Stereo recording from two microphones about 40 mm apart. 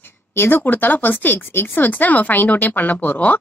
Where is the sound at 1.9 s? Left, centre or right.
Left.